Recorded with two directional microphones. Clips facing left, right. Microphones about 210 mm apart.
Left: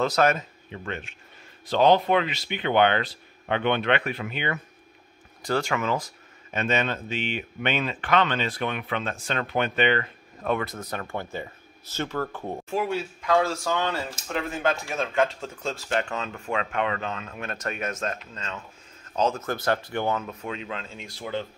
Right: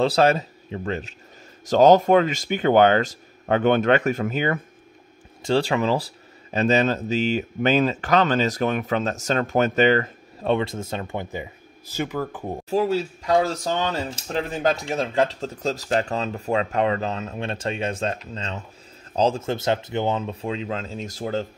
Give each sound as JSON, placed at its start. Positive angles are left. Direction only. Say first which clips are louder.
{"t": 0.0, "sound": "speech", "louder": "right 4 dB", "side_deg": -30}
{"t": 5.4, "sound": "speech", "louder": "right 5 dB", "side_deg": -30}
{"t": 12.6, "sound": "speech", "louder": "right 6 dB", "side_deg": -35}